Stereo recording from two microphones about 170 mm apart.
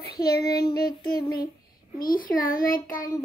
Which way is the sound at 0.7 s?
65° left (ahead or behind).